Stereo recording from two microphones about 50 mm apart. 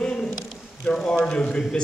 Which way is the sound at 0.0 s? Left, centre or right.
Centre.